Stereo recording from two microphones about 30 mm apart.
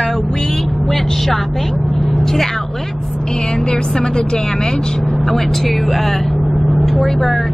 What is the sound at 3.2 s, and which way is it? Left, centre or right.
Speech, left.